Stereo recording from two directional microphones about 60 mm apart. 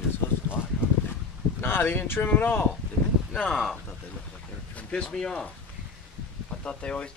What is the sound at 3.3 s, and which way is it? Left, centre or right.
Speech, centre.